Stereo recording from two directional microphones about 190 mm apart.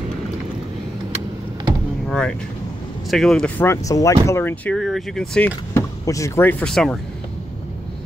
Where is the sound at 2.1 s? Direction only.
5° left (ahead or behind).